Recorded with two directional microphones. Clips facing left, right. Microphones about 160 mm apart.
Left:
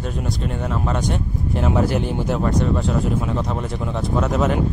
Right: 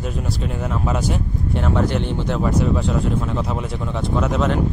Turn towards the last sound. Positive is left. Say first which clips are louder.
# even
turn(degrees=5)  # may be behind; listen again after turning